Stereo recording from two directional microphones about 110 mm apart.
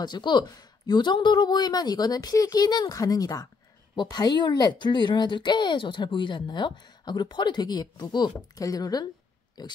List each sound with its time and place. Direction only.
0.0 s speech: 40° left (ahead or behind)